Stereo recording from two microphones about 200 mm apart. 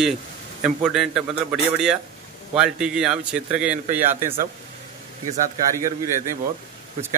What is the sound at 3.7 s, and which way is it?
Speech, 40° right (ahead or behind).